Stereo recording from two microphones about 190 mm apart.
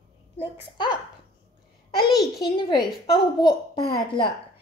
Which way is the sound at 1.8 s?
25° left (ahead or behind).